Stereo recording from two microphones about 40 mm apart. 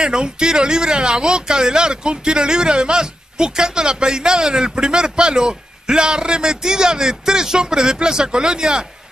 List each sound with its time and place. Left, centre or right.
0.0 s speech: centre